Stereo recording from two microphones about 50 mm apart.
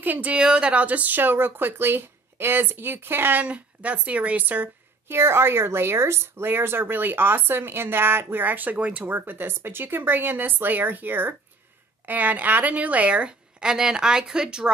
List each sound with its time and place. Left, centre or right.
0.0 s a woman's voice: right
0.4 s a woman's voice: centre; by 3.4 s right
3.4 s a woman's voice: right
5.0 s a woman's voice: right
9.0 s a woman's voice: right; by 14.7 s centre